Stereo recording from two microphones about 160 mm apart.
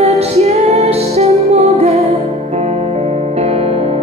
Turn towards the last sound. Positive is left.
turn(degrees=-40)  # may be behind; listen again after turning